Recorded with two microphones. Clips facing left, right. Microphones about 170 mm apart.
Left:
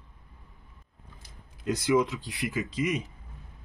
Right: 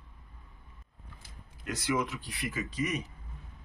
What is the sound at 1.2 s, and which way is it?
Speech, 20° left (ahead or behind).